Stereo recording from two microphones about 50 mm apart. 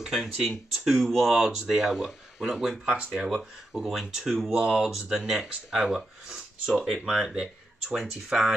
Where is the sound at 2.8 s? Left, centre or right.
Centre.